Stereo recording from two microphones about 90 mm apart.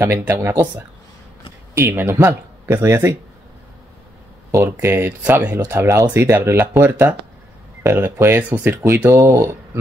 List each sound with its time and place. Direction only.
0.0 s speech: 25° right (ahead or behind)
4.8 s speech: 25° right (ahead or behind)
5.7 s speech: 30° right (ahead or behind)